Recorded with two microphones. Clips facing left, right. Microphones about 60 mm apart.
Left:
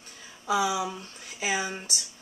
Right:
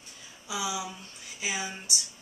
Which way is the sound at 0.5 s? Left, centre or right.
Left.